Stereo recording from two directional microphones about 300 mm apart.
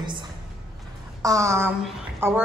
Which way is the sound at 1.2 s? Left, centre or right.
Centre.